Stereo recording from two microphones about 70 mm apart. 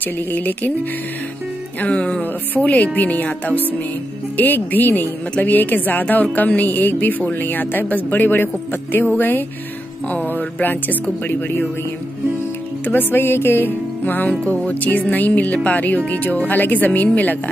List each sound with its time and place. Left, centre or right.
0.0 s a woman's voice: left
1.8 s music: centre
2.5 s a woman's voice: left
12.8 s a woman's voice: left